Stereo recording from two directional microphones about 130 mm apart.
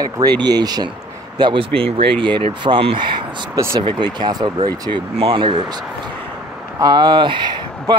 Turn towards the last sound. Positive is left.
turn(degrees=-35)  # may be behind; listen again after turning